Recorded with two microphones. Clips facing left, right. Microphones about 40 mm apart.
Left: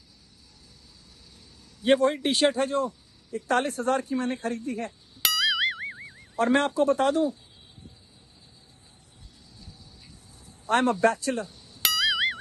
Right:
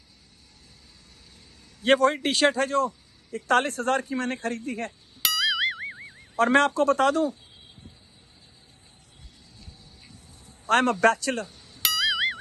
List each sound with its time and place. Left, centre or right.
1.8 s a man's voice: right
5.2 s music: centre
6.3 s a man's voice: right
10.7 s a man's voice: right
11.8 s music: centre